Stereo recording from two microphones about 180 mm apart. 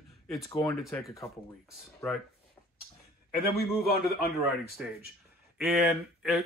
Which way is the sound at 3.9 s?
55° left (ahead or behind).